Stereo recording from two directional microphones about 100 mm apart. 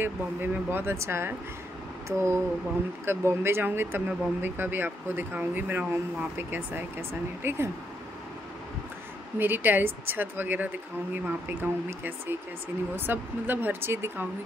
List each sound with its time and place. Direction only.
0.0 s speech: 20° right (ahead or behind)
9.4 s speech: 20° right (ahead or behind)